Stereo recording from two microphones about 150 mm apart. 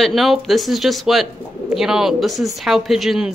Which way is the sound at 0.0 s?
Centre (ahead or behind).